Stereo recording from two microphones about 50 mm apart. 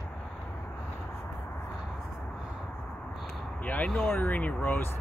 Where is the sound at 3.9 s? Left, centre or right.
Left.